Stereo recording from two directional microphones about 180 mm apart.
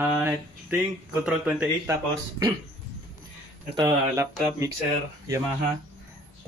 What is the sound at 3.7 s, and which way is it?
Speech, 15° right (ahead or behind).